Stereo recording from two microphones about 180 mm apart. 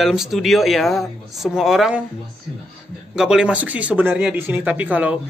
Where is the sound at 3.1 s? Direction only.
5° right (ahead or behind).